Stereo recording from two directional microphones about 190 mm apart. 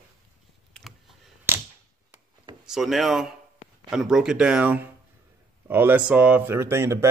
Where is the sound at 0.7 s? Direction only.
Centre (ahead or behind).